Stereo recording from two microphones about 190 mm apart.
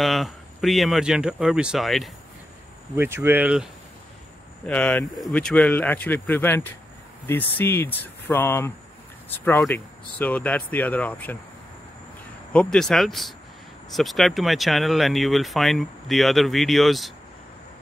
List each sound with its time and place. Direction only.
0.0 s speech: centre (ahead or behind)
3.0 s speech: 10° right (ahead or behind)
4.6 s speech: 5° left (ahead or behind)
12.5 s speech: 5° left (ahead or behind)